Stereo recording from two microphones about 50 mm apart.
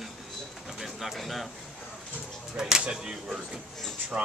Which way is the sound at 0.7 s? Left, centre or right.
Centre.